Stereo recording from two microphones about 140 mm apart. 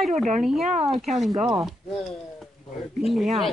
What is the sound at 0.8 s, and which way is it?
Speech, centre (ahead or behind).